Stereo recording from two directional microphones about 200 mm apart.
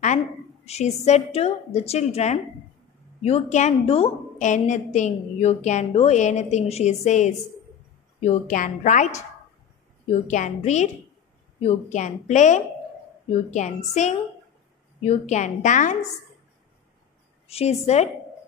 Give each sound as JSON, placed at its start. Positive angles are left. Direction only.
{"t": 0.7, "sound": "a woman's voice", "side_deg": 35}
{"t": 10.2, "sound": "a woman's voice", "side_deg": 35}
{"t": 17.5, "sound": "a woman's voice", "side_deg": 30}